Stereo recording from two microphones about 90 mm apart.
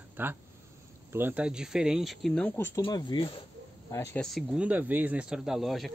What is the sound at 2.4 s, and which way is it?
Speech, 25° left (ahead or behind).